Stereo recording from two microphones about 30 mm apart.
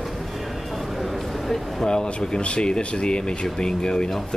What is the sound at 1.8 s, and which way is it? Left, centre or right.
Speech, left.